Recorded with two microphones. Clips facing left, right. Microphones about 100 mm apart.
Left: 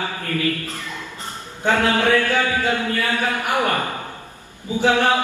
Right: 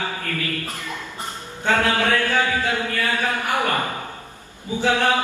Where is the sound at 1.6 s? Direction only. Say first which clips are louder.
Left 2 dB; 15° left (ahead or behind).